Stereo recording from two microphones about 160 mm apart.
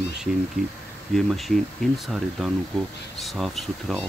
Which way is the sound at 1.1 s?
Centre (ahead or behind).